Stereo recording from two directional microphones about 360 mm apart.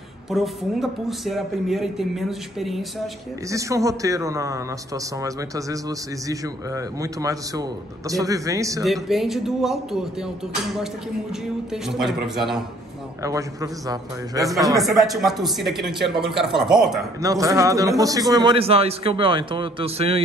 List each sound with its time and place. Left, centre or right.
0.3 s a man's voice: centre
11.7 s a man's voice: centre